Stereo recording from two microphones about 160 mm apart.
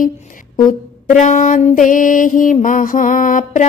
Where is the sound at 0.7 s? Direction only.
50° left (ahead or behind).